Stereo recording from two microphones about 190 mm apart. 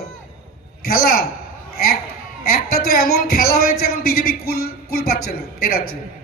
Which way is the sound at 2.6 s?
50° left (ahead or behind).